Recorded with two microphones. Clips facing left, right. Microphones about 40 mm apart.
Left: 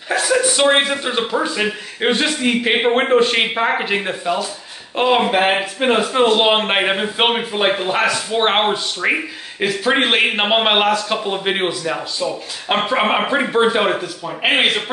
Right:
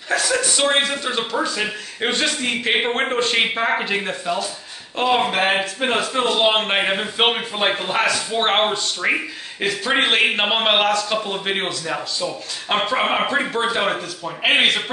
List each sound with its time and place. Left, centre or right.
0.1 s a man's voice: centre